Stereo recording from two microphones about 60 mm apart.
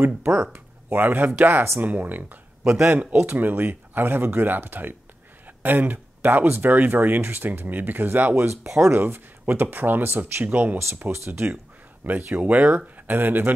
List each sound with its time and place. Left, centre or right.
0.0 s speech: right
8.5 s speech: right
11.0 s speech: right
12.4 s speech: right